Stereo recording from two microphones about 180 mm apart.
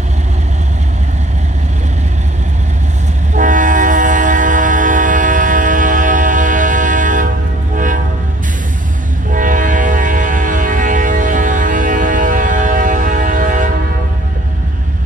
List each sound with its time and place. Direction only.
3.3 s train: 45° right (ahead or behind)
7.7 s vehicle: 45° right (ahead or behind)
9.3 s train: 45° right (ahead or behind)